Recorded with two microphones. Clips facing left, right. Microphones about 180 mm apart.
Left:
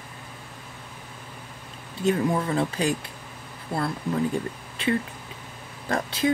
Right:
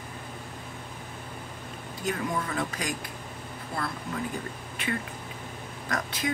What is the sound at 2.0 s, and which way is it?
Speech, 30° left (ahead or behind).